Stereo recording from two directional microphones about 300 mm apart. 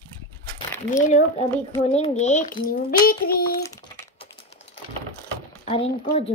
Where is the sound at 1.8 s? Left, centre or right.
Left.